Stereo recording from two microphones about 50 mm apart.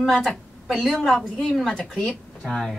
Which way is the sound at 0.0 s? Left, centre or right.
Centre.